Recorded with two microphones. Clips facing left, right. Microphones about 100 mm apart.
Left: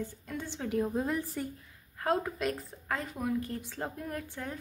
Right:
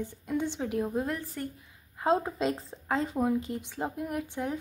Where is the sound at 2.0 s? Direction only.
25° right (ahead or behind).